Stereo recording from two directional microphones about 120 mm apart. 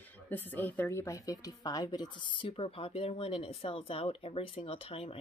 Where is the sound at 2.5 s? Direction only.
50° left (ahead or behind).